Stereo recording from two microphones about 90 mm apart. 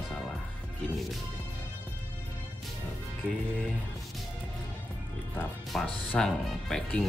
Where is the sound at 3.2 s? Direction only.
20° left (ahead or behind).